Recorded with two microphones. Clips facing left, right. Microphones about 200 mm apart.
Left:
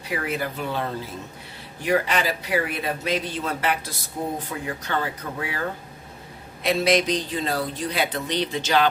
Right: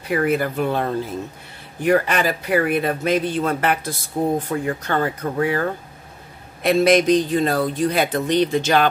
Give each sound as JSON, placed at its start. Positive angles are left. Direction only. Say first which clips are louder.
{"t": 0.1, "sound": "speech", "louder": "right 8 dB", "side_deg": -55}